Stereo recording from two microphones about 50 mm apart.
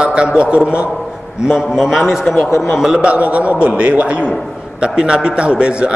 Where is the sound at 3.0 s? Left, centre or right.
Right.